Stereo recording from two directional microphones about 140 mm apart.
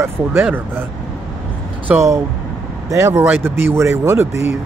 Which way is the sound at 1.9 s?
20° right (ahead or behind).